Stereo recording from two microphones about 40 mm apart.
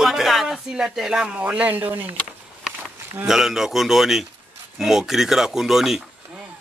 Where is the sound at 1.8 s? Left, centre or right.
Right.